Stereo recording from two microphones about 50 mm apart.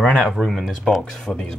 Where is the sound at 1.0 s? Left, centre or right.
Centre.